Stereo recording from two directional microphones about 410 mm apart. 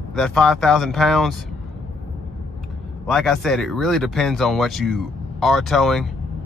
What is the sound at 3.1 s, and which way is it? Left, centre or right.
Speech, centre.